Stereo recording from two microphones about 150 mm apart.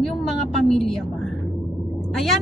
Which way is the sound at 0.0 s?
Centre (ahead or behind).